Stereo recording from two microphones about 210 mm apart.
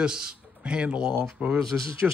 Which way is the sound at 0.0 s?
5° right (ahead or behind).